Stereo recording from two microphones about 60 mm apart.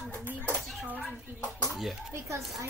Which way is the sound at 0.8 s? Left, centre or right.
Right.